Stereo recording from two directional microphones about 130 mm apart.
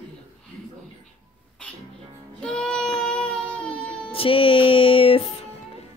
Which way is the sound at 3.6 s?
45° left (ahead or behind).